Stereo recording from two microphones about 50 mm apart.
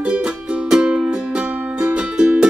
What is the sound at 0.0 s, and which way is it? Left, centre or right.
Music, centre.